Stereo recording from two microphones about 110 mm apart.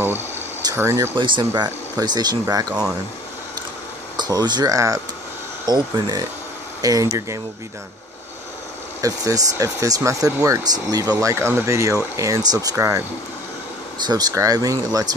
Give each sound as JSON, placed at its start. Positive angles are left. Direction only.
{"t": 0.7, "sound": "speech", "side_deg": -25}
{"t": 1.1, "sound": "speech", "side_deg": -45}
{"t": 4.2, "sound": "speech", "side_deg": -40}
{"t": 9.0, "sound": "speech", "side_deg": -30}
{"t": 14.0, "sound": "speech", "side_deg": -35}